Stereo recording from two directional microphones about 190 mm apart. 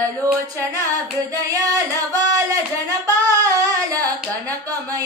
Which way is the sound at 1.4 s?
20° right (ahead or behind).